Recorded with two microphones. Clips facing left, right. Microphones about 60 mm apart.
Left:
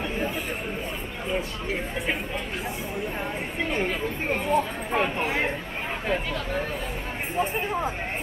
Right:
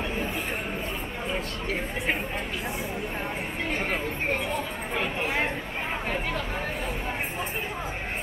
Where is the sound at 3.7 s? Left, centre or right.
Right.